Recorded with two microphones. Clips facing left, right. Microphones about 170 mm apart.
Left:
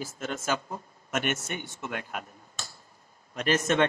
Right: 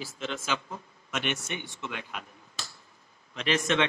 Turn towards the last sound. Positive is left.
turn(degrees=45)  # may be behind; listen again after turning